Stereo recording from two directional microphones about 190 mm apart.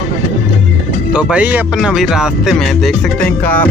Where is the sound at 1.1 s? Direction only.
5° right (ahead or behind).